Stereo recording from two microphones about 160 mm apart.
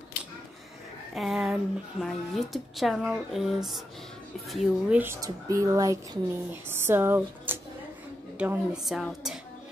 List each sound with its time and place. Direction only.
1.1 s speech: centre (ahead or behind)